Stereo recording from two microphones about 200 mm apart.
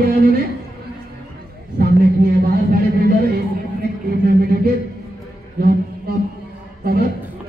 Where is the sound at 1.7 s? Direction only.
50° right (ahead or behind).